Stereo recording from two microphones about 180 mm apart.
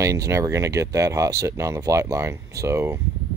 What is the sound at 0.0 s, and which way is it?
Speech, 20° right (ahead or behind).